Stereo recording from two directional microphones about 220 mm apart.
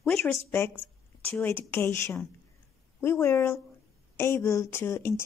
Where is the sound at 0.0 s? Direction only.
Centre (ahead or behind).